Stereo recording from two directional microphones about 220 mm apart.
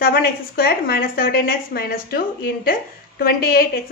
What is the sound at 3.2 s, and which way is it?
Speech, 45° left (ahead or behind).